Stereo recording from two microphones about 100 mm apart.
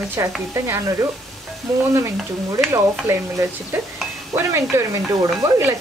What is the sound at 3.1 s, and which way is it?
Speech, 25° right (ahead or behind).